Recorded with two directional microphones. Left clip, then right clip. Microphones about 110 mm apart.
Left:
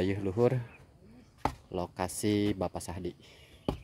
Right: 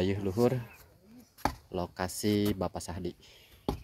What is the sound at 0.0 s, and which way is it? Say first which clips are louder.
Speech: even; 35° left (ahead or behind).